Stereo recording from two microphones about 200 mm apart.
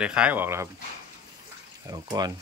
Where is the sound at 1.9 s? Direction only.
20° right (ahead or behind).